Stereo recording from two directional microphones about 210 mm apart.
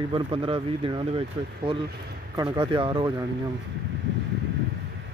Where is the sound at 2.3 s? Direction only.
20° right (ahead or behind).